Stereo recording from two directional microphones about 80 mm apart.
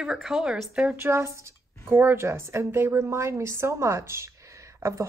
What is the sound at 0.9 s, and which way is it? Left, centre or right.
A woman's voice, right.